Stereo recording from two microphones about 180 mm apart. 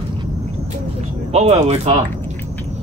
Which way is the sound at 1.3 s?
35° right (ahead or behind).